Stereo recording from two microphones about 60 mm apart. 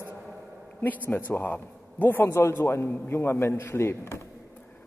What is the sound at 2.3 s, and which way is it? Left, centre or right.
A man's voice, left.